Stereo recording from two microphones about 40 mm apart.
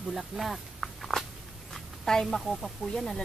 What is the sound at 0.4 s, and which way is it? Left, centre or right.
Speech, centre.